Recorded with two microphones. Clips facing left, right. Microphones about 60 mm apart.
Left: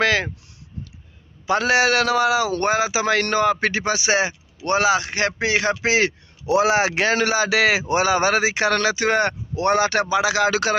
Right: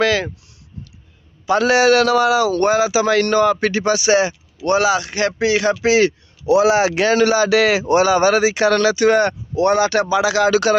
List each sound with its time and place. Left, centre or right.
0.0 s speech: left
1.5 s speech: left
2.5 s a man's voice: left
10.0 s speech: left